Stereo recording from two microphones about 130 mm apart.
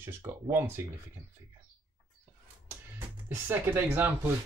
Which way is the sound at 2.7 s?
20° right (ahead or behind).